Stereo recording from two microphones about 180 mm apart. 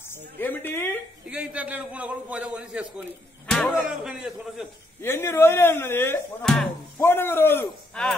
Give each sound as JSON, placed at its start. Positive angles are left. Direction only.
{"t": 0.1, "sound": "speech", "side_deg": 10}
{"t": 1.3, "sound": "a man's voice", "side_deg": -5}
{"t": 3.4, "sound": "a man's voice", "side_deg": 5}
{"t": 5.0, "sound": "speech", "side_deg": 15}